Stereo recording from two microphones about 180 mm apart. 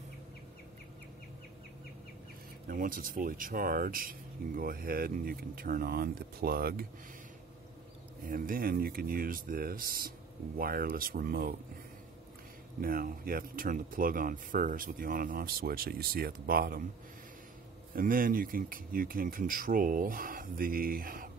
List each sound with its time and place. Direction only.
2.7 s speech: 50° right (ahead or behind)
8.3 s speech: 50° right (ahead or behind)
12.8 s speech: 55° right (ahead or behind)
17.9 s speech: 50° right (ahead or behind)